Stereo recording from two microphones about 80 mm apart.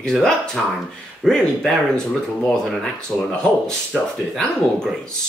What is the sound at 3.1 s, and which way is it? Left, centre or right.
Speech, centre.